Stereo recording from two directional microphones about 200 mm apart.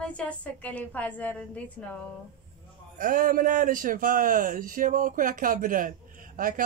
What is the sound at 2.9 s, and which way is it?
Speech, 45° right (ahead or behind).